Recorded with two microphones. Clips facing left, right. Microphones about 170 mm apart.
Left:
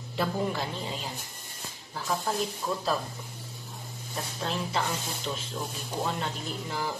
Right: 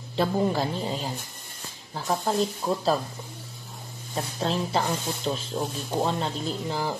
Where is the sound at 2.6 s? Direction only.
40° right (ahead or behind).